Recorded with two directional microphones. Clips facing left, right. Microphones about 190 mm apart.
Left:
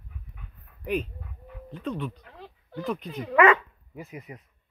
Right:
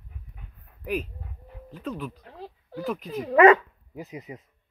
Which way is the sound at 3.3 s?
35° right (ahead or behind).